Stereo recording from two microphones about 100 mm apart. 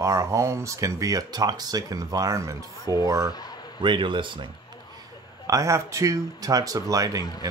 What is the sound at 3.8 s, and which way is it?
Speech, 55° right (ahead or behind).